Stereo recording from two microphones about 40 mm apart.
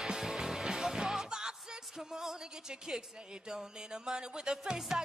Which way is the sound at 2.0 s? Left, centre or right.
Centre.